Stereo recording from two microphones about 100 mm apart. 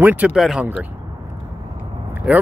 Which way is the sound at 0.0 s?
15° right (ahead or behind).